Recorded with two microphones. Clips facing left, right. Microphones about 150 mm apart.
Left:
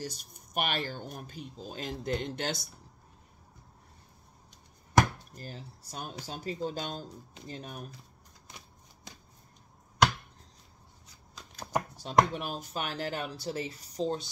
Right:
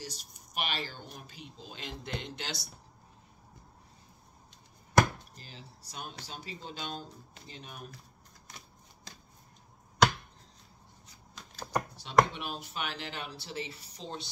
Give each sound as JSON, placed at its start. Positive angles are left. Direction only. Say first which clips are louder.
{"t": 0.0, "sound": "speech", "louder": "left 5 dB", "side_deg": 50}
{"t": 5.3, "sound": "speech", "louder": "left 7 dB", "side_deg": 50}
{"t": 12.0, "sound": "speech", "louder": "even", "side_deg": 40}